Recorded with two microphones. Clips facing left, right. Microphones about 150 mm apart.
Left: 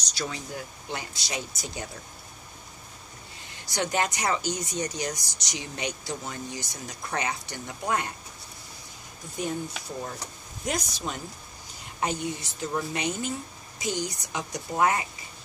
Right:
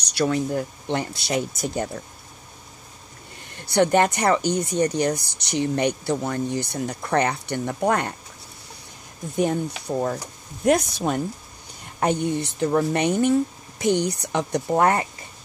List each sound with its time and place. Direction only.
0.1 s speech: 60° right (ahead or behind)
3.5 s speech: 60° right (ahead or behind)
9.4 s speech: 60° right (ahead or behind)